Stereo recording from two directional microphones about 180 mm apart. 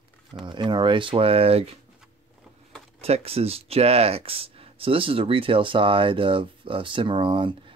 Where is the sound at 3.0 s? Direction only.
35° right (ahead or behind).